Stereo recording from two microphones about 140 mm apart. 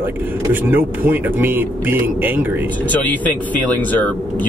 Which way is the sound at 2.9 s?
10° left (ahead or behind).